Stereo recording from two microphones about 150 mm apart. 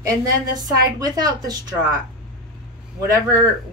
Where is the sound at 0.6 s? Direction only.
25° right (ahead or behind).